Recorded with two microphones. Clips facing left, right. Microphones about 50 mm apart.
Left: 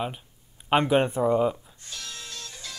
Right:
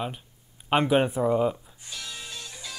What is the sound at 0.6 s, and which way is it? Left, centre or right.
Music, centre.